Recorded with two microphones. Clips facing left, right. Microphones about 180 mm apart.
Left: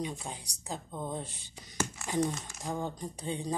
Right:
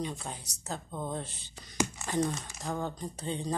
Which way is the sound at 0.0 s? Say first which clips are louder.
Right 1 dB; 10° left (ahead or behind).